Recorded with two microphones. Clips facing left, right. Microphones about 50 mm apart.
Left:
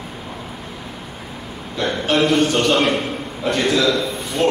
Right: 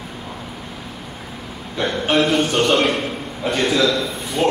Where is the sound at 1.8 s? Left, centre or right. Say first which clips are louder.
Even; centre.